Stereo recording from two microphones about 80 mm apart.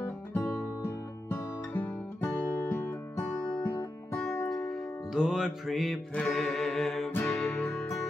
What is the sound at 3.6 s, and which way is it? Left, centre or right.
Music, left.